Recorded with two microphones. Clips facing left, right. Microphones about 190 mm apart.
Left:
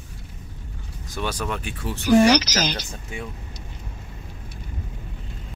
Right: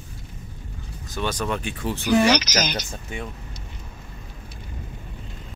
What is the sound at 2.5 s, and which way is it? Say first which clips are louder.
Speech: even; 15° right (ahead or behind).